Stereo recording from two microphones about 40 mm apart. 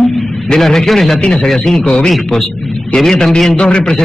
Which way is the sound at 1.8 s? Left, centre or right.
Centre.